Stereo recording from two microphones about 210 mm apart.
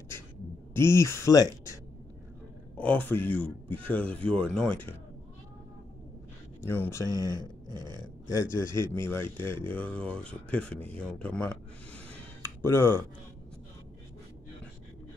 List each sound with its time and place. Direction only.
0.7 s speech: 15° left (ahead or behind)
2.8 s speech: 5° left (ahead or behind)
6.7 s speech: 10° left (ahead or behind)
7.2 s speech: 15° right (ahead or behind)
8.3 s speech: 15° left (ahead or behind)